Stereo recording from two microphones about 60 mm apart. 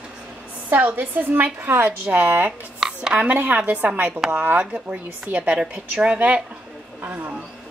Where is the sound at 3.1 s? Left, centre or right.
Right.